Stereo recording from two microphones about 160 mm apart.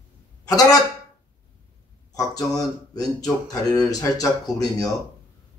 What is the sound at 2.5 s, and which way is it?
Speech, 25° left (ahead or behind).